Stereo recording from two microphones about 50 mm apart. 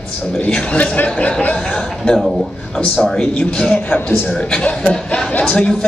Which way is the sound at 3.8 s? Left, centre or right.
Left.